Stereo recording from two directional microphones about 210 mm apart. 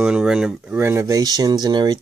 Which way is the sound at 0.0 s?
5° right (ahead or behind).